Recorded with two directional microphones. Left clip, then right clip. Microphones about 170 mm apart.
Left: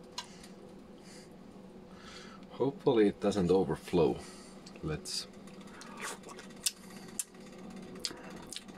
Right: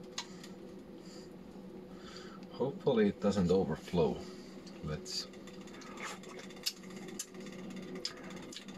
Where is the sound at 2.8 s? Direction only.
75° left (ahead or behind).